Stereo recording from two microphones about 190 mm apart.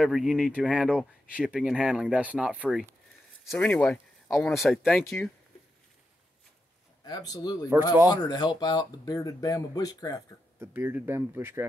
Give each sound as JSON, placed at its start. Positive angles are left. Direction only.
{"t": 0.0, "sound": "speech", "side_deg": 0}
{"t": 3.4, "sound": "speech", "side_deg": 10}
{"t": 7.1, "sound": "speech", "side_deg": 20}
{"t": 10.6, "sound": "speech", "side_deg": -10}